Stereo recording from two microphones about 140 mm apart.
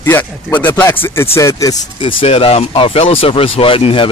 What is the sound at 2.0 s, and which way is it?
Speech, 45° left (ahead or behind).